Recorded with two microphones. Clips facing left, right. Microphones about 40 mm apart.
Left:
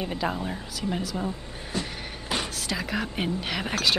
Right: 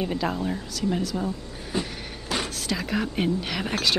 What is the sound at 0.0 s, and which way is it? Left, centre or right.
Speech, centre.